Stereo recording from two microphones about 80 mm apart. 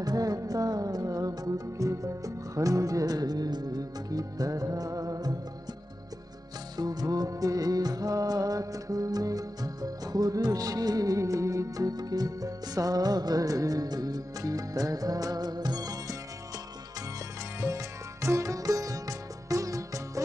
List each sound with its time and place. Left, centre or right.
0.0 s music: right
6.8 s music: right
17.6 s music: right